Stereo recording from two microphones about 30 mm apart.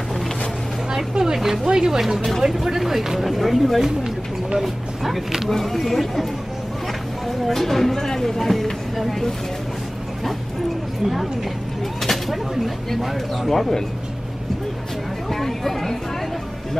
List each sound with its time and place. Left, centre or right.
1.1 s a sound: centre
1.4 s a sound: centre
1.9 s speech: centre
7.2 s speech: centre
8.4 s speech: centre
12.0 s speech: centre
13.5 s speech: centre
15.3 s speech: centre